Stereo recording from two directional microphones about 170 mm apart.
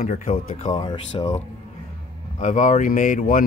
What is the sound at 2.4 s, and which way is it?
Speech, 45° left (ahead or behind).